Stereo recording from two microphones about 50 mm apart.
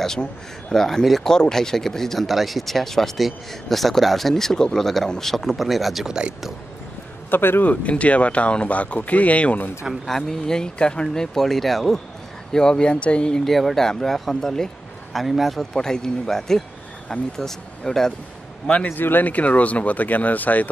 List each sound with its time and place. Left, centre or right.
0.0 s speech: centre
6.0 s speech: centre
7.2 s a man's voice: left
7.7 s speech: left
10.0 s speech: centre
11.3 s speech: centre
12.5 s speech: centre
13.5 s speech: centre
15.7 s speech: centre
18.9 s speech: left
19.3 s speech: left